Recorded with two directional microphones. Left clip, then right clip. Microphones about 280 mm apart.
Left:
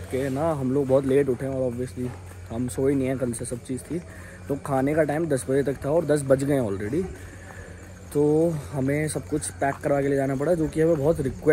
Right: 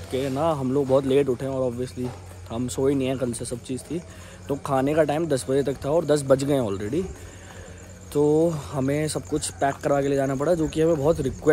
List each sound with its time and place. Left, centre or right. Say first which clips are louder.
0.2 s speech: right 2 dB; centre
2.0 s speech: right 1 dB; centre
2.5 s speech: right 1 dB; centre
2.9 s speech: even; centre
3.2 s speech: right 1 dB; centre
8.1 s speech: right 1 dB; centre
8.8 s speech: even; centre
9.1 s speech: right 1 dB; centre